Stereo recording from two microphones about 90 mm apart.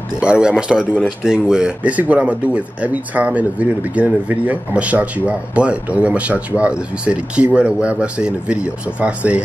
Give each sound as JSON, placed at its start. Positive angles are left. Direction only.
{"t": 0.2, "sound": "speech", "side_deg": -10}